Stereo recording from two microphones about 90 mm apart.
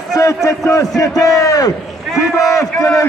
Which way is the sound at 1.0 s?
40° left (ahead or behind).